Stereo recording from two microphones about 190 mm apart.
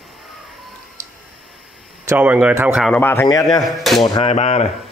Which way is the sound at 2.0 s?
10° right (ahead or behind).